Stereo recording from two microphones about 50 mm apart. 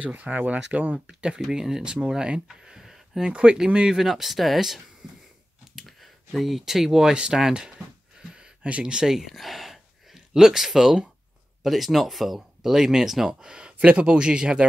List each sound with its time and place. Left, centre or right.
0.0 s speech: right
1.0 s speech: centre
2.4 s a sound: centre
3.3 s speech: centre
5.0 s wheeze: centre
5.8 s speech: centre
8.2 s a sound: centre
11.6 s speech: centre